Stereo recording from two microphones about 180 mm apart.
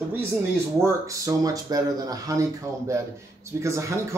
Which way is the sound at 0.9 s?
20° right (ahead or behind).